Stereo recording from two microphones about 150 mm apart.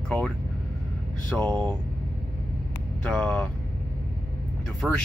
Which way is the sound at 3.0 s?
10° left (ahead or behind).